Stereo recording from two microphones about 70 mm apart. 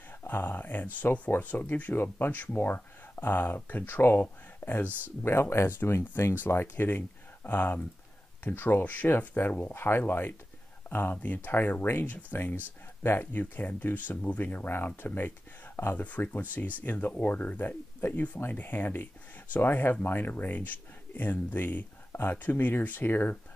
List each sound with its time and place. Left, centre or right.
0.2 s speech: left
4.8 s speech: right
5.2 s speech: left